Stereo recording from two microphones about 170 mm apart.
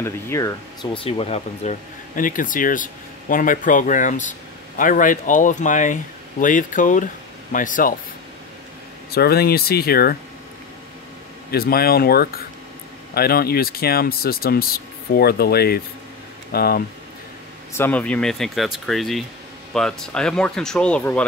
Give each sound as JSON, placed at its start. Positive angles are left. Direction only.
{"t": 0.0, "sound": "speech", "side_deg": 15}
{"t": 0.9, "sound": "speech", "side_deg": 30}
{"t": 9.1, "sound": "speech", "side_deg": 65}
{"t": 11.5, "sound": "speech", "side_deg": 65}
{"t": 17.7, "sound": "speech", "side_deg": 10}